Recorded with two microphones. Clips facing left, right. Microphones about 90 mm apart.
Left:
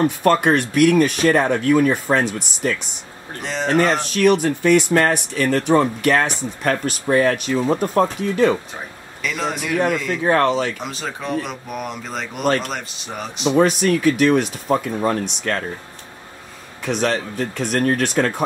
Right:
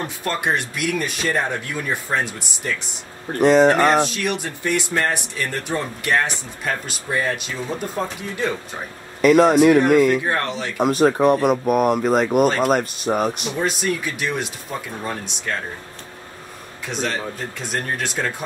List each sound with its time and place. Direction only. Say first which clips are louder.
0.2 s speech: left 4 dB; 55° left (ahead or behind)
3.3 s speech: right 6 dB; 55° right (ahead or behind)
4.1 s speech: left 9 dB; 50° left (ahead or behind)
7.5 s speech: left 8 dB; 45° left (ahead or behind)
9.2 s speech: right 12 dB; 50° right (ahead or behind)
10.3 s speech: left 7 dB; 60° left (ahead or behind)
10.8 s speech: right 12 dB; 50° right (ahead or behind)
13.6 s speech: left 8 dB; 55° left (ahead or behind)
17.6 s speech: left 8 dB; 55° left (ahead or behind)